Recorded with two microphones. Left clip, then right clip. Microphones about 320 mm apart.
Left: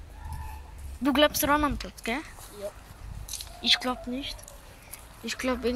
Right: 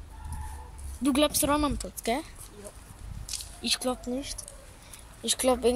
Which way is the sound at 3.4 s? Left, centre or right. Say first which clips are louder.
Left 6 dB; centre.